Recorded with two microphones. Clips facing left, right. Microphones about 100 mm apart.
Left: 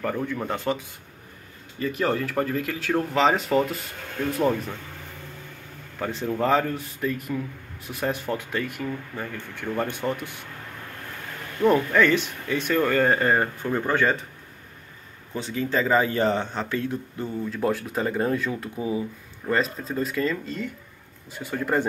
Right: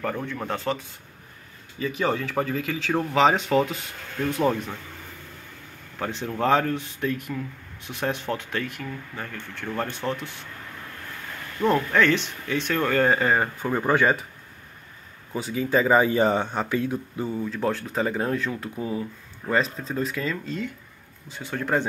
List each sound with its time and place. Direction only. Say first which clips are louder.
0.0 s speech: left 2 dB; 10° left (ahead or behind)
0.7 s speech: left 1 dB; 20° left (ahead or behind)
1.8 s speech: left 1 dB; centre (ahead or behind)
5.9 s speech: left 2 dB; 5° left (ahead or behind)
11.9 s speech: left 1 dB; 5° left (ahead or behind)
13.7 s a man's voice: right 3 dB; 15° right (ahead or behind)
15.3 s a man's voice: right 2 dB; 10° right (ahead or behind)
17.5 s speech: left 1 dB; 5° left (ahead or behind)
18.8 s speech: left 2 dB; 10° left (ahead or behind)